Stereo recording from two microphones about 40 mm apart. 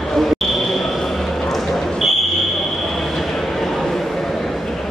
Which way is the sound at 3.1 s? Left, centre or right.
Centre.